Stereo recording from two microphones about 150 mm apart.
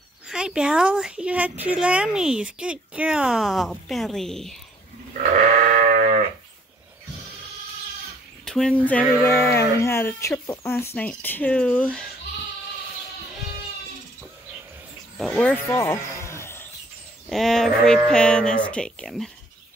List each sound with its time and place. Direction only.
0.3 s speech: 5° right (ahead or behind)
5.7 s sheep: 60° right (ahead or behind)
8.5 s speech: 5° left (ahead or behind)
15.1 s speech: centre (ahead or behind)
15.5 s a sound: 15° left (ahead or behind)
17.3 s speech: centre (ahead or behind)